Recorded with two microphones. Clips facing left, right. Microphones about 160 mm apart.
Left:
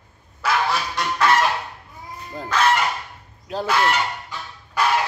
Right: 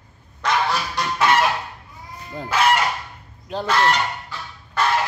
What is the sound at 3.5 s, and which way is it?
Fowl, 5° left (ahead or behind).